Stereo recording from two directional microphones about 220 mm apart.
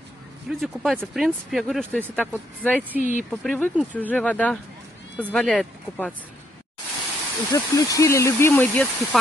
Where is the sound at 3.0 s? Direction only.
40° right (ahead or behind).